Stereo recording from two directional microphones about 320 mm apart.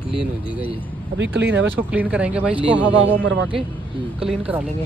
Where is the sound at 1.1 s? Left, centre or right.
Right.